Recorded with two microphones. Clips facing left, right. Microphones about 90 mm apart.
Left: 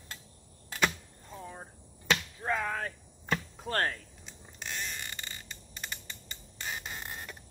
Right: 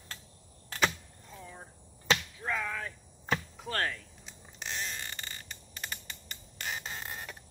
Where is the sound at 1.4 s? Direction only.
35° left (ahead or behind).